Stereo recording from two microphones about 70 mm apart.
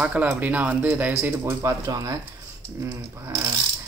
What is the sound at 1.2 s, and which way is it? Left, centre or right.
Speech, right.